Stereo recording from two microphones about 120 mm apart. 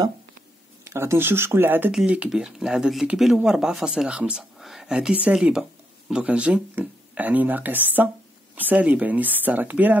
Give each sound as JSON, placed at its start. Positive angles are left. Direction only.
{"t": 0.8, "sound": "speech", "side_deg": -20}